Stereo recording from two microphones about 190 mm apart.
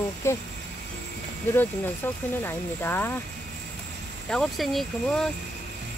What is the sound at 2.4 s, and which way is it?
Speech, 10° left (ahead or behind).